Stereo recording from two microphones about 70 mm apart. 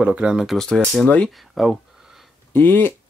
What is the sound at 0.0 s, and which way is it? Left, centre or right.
Speech, centre.